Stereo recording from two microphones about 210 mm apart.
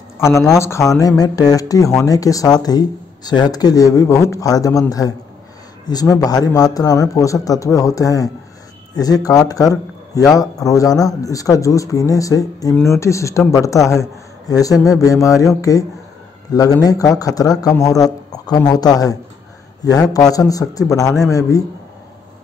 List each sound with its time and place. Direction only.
0.3 s speech: 15° left (ahead or behind)